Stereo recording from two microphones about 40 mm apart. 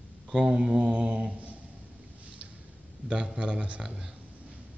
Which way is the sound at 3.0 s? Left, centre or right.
Right.